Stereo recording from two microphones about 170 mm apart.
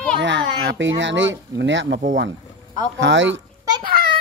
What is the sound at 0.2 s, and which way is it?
A child's voice, 85° right.